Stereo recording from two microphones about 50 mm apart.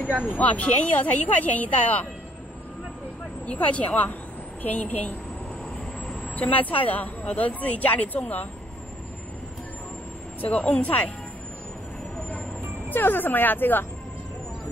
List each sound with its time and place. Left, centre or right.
0.4 s speech: left
3.4 s speech: left
10.4 s speech: left
12.9 s speech: left